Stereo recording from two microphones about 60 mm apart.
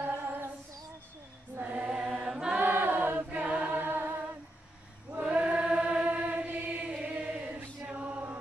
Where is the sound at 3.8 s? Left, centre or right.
Right.